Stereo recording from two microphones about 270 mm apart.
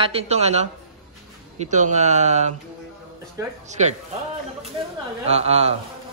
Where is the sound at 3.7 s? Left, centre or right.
Right.